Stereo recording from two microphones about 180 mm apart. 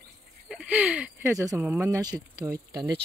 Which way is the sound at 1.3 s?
15° right (ahead or behind).